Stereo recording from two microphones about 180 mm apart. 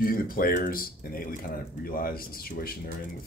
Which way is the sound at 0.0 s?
55° left (ahead or behind).